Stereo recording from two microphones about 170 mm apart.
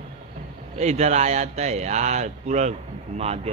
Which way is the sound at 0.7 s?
40° right (ahead or behind).